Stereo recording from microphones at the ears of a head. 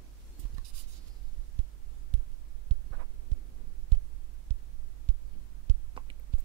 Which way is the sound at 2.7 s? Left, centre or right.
Right.